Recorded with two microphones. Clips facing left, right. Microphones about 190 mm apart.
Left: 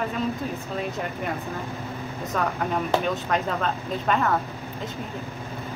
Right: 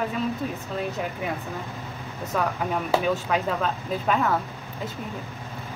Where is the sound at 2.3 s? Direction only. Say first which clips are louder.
Even; 5° right (ahead or behind).